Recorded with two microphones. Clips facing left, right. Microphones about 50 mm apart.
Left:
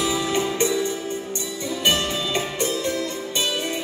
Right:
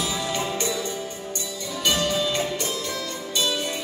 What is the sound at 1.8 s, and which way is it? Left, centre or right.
Music, left.